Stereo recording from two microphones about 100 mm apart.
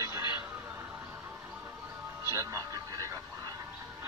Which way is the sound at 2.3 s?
30° right (ahead or behind).